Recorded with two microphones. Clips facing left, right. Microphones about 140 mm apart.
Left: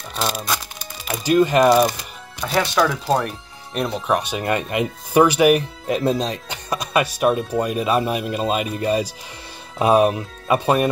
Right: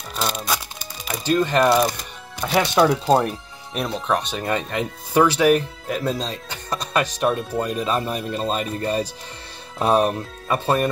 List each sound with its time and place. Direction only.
0.1 s music: centre (ahead or behind)
1.0 s speech: 5° left (ahead or behind)
2.9 s speech: 25° right (ahead or behind)
3.7 s speech: 5° left (ahead or behind)